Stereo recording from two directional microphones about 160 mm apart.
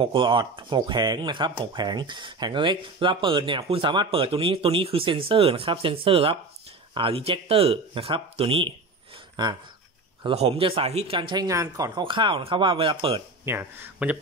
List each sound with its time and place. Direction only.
0.0 s speech: 30° right (ahead or behind)
10.2 s speech: 40° right (ahead or behind)
13.5 s speech: 15° right (ahead or behind)